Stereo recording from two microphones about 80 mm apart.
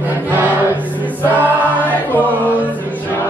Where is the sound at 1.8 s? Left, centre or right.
Left.